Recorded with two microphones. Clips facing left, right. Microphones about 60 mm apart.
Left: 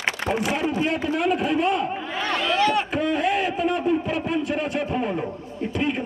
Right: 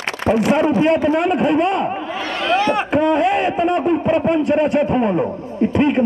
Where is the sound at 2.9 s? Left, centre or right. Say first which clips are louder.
Right 7 dB; right.